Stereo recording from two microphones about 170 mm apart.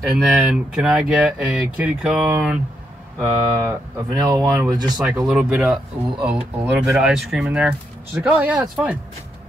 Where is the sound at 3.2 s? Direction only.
20° right (ahead or behind).